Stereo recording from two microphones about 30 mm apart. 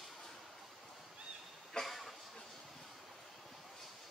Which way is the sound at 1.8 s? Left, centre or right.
Centre.